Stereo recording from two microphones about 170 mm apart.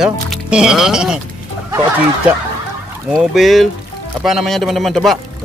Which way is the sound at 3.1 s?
Centre (ahead or behind).